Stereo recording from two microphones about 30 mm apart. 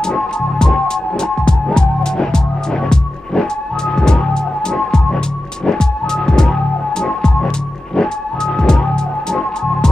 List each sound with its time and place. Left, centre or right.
0.0 s music: left
3.9 s music: left
5.7 s music: left
8.5 s music: left